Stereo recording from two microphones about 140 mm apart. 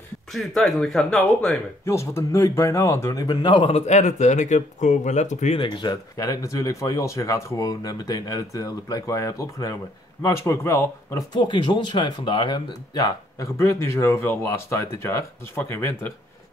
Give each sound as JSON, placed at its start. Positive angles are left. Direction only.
{"t": 0.3, "sound": "speech", "side_deg": 0}
{"t": 1.9, "sound": "speech", "side_deg": 20}
{"t": 5.6, "sound": "speech", "side_deg": 30}
{"t": 11.3, "sound": "speech", "side_deg": 35}